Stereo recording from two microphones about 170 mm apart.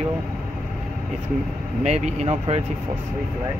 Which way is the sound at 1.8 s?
40° right (ahead or behind).